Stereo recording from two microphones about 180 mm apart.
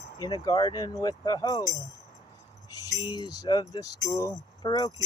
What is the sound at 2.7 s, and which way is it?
Speech, 20° left (ahead or behind).